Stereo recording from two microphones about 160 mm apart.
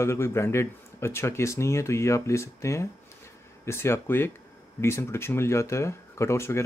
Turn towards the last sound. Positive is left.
turn(degrees=15)  # may be behind; listen again after turning